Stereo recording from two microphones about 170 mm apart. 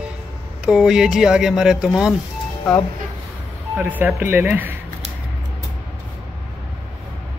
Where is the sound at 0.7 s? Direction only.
5° right (ahead or behind).